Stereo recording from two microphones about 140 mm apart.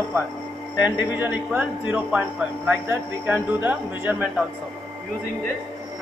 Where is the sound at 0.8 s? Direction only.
15° right (ahead or behind).